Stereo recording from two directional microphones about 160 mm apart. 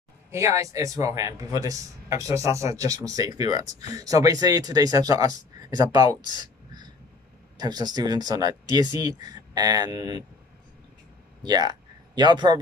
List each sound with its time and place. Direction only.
0.3 s a man's voice: 20° right (ahead or behind)
6.3 s a sound: 25° right (ahead or behind)
7.5 s a man's voice: 25° right (ahead or behind)
11.4 s a man's voice: 25° right (ahead or behind)